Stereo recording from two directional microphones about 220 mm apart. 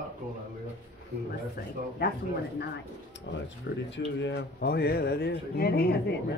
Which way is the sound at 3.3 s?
55° left (ahead or behind).